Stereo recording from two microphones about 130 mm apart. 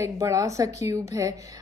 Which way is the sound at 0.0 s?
25° right (ahead or behind).